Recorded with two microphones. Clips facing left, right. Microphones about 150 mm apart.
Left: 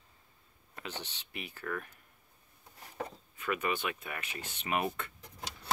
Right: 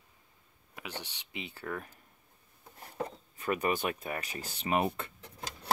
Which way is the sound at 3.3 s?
35° right (ahead or behind).